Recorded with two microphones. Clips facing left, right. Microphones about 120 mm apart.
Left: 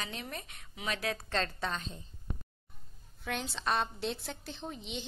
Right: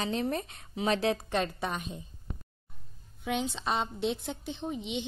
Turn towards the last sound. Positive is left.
turn(degrees=-20)  # may be behind; listen again after turning